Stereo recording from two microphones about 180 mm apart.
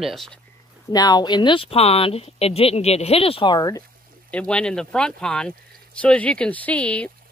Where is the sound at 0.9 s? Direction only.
20° left (ahead or behind).